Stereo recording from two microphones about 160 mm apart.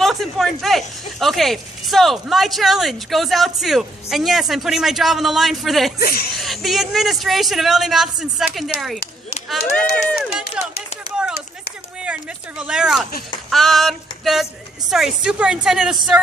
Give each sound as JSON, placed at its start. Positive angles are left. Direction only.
{"t": 0.0, "sound": "speech", "side_deg": 0}
{"t": 5.9, "sound": "speech", "side_deg": 75}
{"t": 6.3, "sound": "speech", "side_deg": 0}
{"t": 10.1, "sound": "run", "side_deg": -5}
{"t": 12.0, "sound": "speech", "side_deg": -5}